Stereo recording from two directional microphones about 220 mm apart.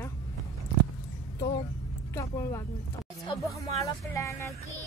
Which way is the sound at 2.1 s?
15° left (ahead or behind).